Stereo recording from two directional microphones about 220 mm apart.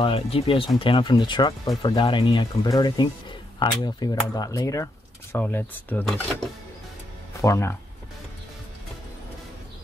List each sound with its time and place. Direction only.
0.0 s speech: 25° left (ahead or behind); by 6.2 s 10° left (ahead or behind)
7.4 s speech: 10° left (ahead or behind)